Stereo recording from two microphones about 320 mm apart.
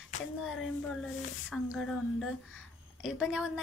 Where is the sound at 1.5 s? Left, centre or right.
Centre.